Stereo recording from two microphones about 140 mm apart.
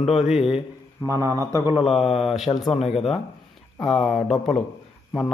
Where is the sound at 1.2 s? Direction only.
25° right (ahead or behind).